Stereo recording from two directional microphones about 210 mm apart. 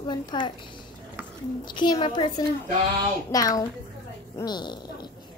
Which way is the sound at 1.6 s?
20° left (ahead or behind).